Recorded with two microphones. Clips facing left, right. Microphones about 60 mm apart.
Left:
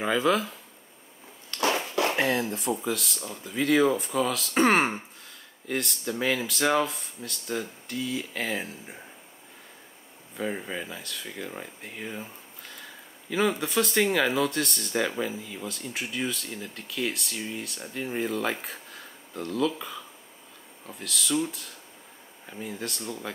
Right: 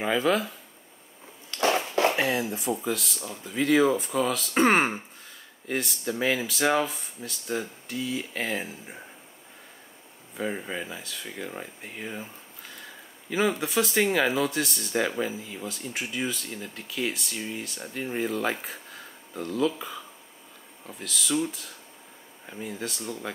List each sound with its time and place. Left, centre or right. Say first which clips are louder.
0.0 s speech: even; centre
2.0 s speech: even; centre
10.3 s speech: even; centre